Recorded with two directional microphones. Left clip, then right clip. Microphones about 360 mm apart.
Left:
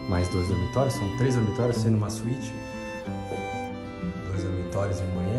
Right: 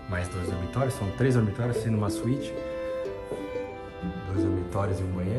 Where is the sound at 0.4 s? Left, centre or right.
Centre.